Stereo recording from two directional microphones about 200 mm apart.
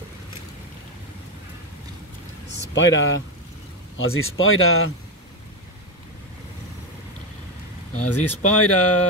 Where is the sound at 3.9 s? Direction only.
90° left.